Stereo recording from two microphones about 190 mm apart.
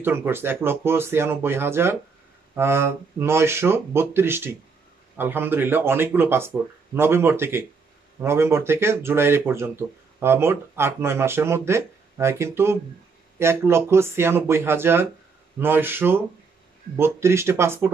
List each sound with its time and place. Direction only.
0.0 s speech: 10° right (ahead or behind)